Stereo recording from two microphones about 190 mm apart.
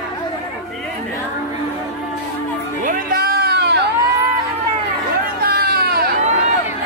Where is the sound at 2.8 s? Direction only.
50° right (ahead or behind).